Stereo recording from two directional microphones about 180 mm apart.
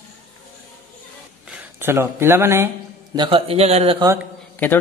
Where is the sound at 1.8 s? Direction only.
15° right (ahead or behind).